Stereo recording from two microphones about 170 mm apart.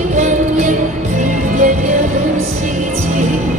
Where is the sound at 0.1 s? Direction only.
45° right (ahead or behind).